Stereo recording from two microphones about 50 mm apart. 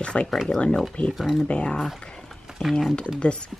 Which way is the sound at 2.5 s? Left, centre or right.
Centre.